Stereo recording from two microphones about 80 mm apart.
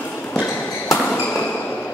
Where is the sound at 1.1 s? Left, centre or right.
Centre.